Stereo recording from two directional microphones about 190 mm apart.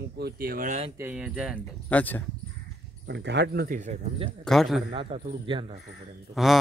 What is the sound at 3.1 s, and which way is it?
Speech, 65° right (ahead or behind).